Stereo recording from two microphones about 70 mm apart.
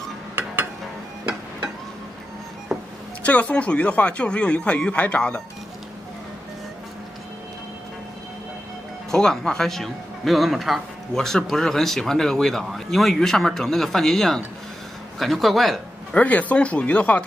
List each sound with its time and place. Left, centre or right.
3.3 s speech: left
9.1 s a man's voice: centre
16.1 s speech: left